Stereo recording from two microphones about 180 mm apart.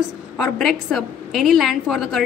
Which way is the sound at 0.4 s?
Centre (ahead or behind).